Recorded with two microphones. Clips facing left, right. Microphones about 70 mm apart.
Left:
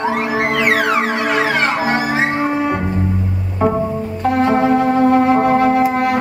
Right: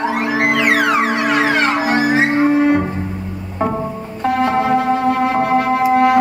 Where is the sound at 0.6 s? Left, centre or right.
Left.